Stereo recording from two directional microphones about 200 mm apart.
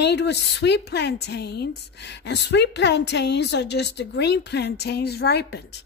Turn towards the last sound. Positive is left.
turn(degrees=55)  # may be behind; listen again after turning